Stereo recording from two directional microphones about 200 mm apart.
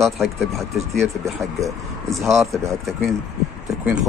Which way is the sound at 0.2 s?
Centre (ahead or behind).